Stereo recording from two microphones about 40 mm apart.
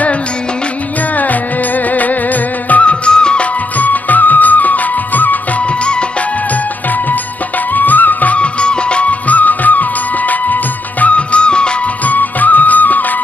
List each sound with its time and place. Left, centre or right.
1.1 s music: left
2.7 s music of bollywood: left
3.7 s music of bollywood: left
7.7 s music: left
8.4 s music of bollywood: left
9.3 s music of bollywood: left
12.0 s music: left